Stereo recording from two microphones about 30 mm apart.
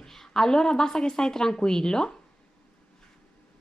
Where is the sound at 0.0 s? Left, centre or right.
Centre.